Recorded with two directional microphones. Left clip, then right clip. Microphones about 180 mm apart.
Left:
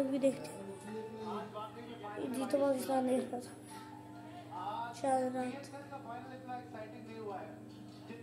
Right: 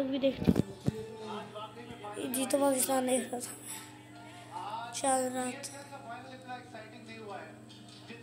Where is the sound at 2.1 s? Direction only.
15° right (ahead or behind).